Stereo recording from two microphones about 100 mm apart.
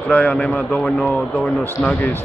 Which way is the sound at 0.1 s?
10° left (ahead or behind).